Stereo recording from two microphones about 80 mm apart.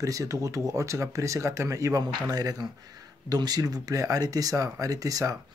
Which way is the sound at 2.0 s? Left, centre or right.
Right.